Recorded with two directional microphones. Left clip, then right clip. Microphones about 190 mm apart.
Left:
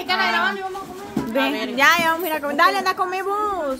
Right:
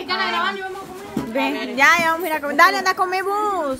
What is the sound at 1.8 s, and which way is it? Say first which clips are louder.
A child's voice: right 1 dB; centre (ahead or behind).